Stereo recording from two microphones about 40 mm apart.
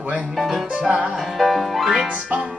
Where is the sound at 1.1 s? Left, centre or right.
Centre.